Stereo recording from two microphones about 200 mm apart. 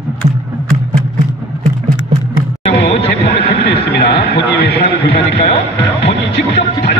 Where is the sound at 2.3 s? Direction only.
50° left (ahead or behind).